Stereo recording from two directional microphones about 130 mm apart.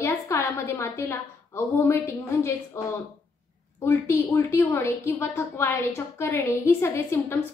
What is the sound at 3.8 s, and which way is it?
A woman's voice, 20° left (ahead or behind).